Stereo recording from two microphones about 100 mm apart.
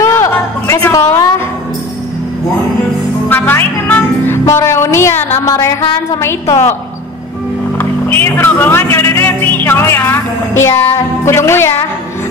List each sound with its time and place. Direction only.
0.0 s music: 30° left (ahead or behind)
3.3 s music: 20° left (ahead or behind)
6.1 s a woman's voice: 35° left (ahead or behind)
7.7 s speech: 20° left (ahead or behind)